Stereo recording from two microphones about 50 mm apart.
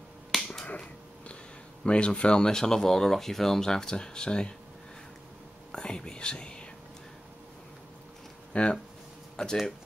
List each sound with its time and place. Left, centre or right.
0.3 s finger snapping: centre
1.9 s speech: left
5.7 s speech: centre
8.5 s speech: left
9.4 s speech: centre